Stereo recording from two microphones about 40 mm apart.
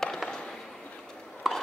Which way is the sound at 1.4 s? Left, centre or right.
Centre.